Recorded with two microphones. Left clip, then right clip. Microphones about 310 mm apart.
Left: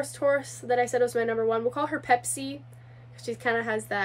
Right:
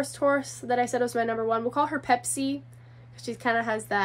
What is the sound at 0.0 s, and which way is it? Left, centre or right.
A woman's voice, centre.